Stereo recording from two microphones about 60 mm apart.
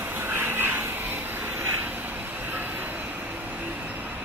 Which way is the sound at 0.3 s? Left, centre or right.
Right.